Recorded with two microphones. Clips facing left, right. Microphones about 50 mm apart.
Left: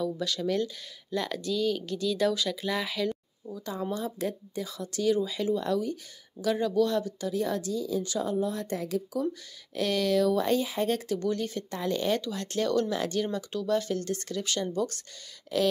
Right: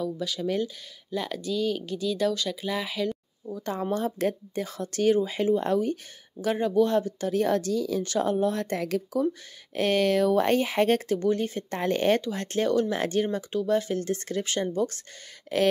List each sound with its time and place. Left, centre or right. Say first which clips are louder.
0.0 s speech: even; centre
3.9 s a woman's voice: right 7 dB; right
9.8 s a woman's voice: right 3 dB; right
11.1 s speech: right 4 dB; right
11.7 s speech: right 5 dB; right
12.2 s speech: right 3 dB; right